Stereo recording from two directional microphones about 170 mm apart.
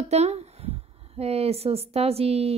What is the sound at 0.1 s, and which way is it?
Speech, 40° right (ahead or behind).